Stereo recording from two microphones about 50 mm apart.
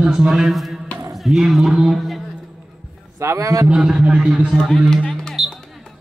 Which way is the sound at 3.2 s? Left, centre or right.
Right.